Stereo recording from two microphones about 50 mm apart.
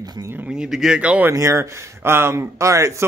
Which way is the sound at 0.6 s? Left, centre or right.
Centre.